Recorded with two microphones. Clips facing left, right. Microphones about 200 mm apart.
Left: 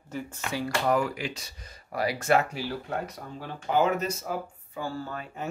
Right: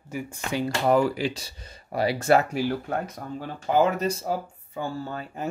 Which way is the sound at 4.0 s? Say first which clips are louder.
Right 4 dB; 30° right (ahead or behind).